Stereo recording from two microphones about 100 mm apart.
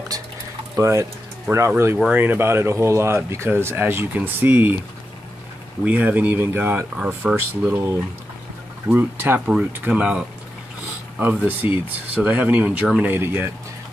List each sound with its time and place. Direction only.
0.7 s speech: 30° right (ahead or behind)
1.5 s speech: 15° right (ahead or behind)
5.9 s speech: 15° right (ahead or behind)
8.8 s speech: 20° right (ahead or behind)
13.0 s speech: 20° right (ahead or behind)